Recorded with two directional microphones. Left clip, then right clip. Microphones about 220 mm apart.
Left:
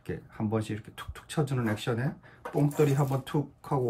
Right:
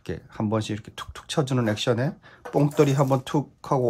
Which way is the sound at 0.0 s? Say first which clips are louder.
Right 5 dB; 15° right (ahead or behind).